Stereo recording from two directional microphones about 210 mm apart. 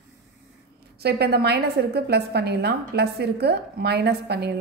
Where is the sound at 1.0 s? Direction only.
50° right (ahead or behind).